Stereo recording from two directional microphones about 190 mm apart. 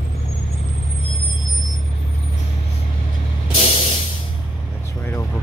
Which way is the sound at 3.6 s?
30° left (ahead or behind).